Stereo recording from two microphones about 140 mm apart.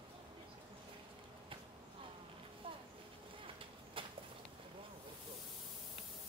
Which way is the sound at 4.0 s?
40° right (ahead or behind).